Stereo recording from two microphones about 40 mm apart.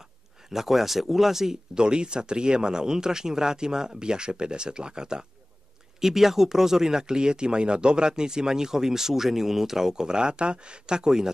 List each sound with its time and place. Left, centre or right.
0.5 s speech: centre
1.8 s speech: right
5.9 s speech: centre